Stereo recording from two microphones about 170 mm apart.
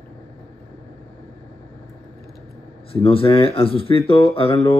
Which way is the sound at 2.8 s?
35° left (ahead or behind).